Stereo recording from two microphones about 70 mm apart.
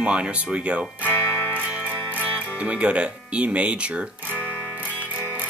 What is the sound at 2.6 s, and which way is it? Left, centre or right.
Speech, centre.